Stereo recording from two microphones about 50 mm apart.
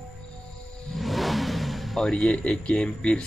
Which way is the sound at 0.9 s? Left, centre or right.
Centre.